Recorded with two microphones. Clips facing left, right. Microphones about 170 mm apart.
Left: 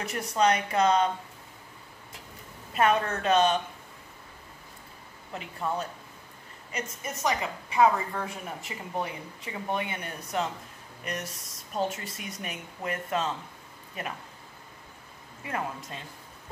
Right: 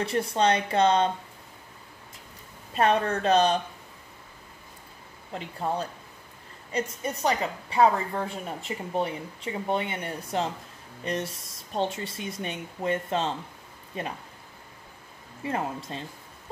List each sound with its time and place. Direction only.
0.0 s a woman's voice: 30° right (ahead or behind)
2.7 s speech: 35° right (ahead or behind)
5.3 s a woman's voice: 30° right (ahead or behind)
15.4 s a woman's voice: 30° right (ahead or behind)